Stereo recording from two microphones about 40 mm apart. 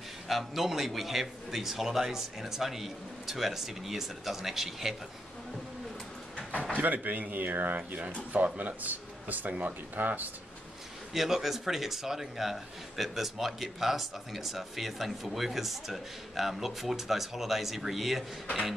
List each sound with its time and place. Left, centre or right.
0.3 s a man's voice: centre
6.8 s speech: right
11.1 s a man's voice: centre